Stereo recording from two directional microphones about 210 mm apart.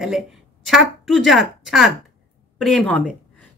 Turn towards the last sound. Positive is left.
turn(degrees=0)  # may be behind; listen again after turning